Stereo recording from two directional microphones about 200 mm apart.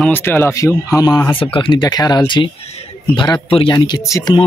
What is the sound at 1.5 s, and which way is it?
Speech, 25° left (ahead or behind).